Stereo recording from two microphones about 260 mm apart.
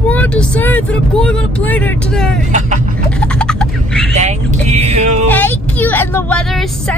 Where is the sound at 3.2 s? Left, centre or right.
Centre.